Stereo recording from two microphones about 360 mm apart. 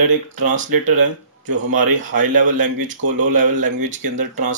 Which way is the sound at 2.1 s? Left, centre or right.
Right.